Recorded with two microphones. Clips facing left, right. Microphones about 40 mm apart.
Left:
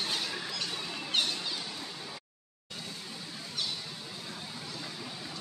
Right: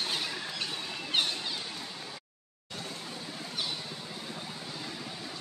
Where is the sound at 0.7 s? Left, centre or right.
Centre.